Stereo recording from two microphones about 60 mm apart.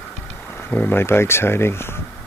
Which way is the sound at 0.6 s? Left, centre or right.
Left.